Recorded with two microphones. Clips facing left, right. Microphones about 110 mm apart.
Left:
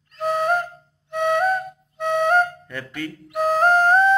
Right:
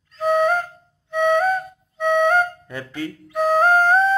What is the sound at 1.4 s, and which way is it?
Music, centre (ahead or behind).